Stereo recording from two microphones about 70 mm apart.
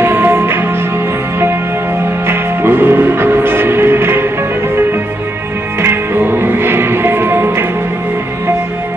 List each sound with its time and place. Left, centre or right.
0.0 s music: right
2.2 s music: right
5.8 s music: right